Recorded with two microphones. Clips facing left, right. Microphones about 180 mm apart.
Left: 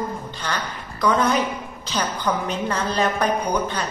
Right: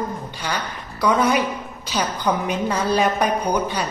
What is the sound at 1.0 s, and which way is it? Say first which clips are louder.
A woman's voice: right 1 dB; 10° right (ahead or behind).